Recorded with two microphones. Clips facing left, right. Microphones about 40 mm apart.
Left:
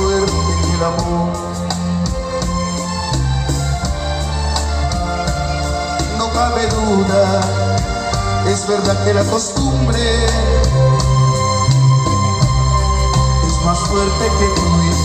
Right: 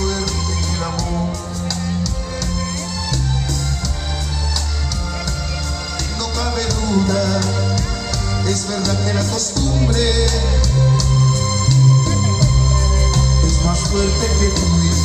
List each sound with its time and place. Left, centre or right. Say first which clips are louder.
0.0 s music: left 7 dB; centre
6.3 s music: left 6 dB; centre
8.5 s music: left 6 dB; centre
10.5 s music: left 4 dB; centre
13.7 s music: left 5 dB; centre